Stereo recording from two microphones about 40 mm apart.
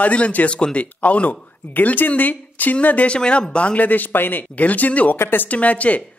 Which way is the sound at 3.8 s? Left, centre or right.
Left.